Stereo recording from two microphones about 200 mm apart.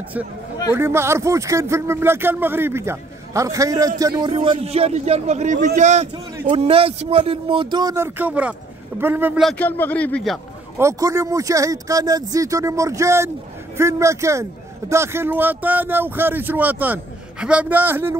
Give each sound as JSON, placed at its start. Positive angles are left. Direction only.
{"t": 0.7, "sound": "a man's voice", "side_deg": -10}
{"t": 10.8, "sound": "speech", "side_deg": -15}